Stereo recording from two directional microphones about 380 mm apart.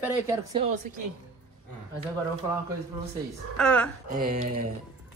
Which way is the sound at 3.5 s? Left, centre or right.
Centre.